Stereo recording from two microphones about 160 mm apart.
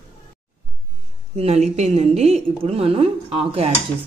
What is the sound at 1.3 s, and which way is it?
A woman's voice, 40° right (ahead or behind).